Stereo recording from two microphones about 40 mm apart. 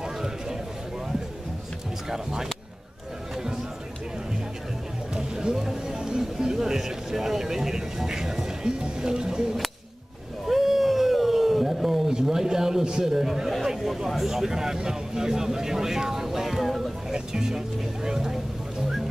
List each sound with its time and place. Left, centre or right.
2.0 s speech: centre
5.1 s a sound: centre
8.6 s music: centre
10.4 s a sound: centre
12.8 s a man's voice: centre
17.1 s vehicle: centre